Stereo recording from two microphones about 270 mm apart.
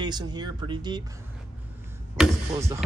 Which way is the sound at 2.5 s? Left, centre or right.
Centre.